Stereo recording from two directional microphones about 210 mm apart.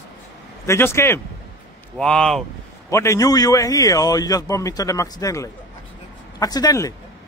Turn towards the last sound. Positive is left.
turn(degrees=15)  # may be behind; listen again after turning